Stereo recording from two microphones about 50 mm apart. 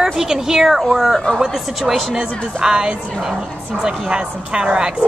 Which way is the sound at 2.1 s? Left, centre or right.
Centre.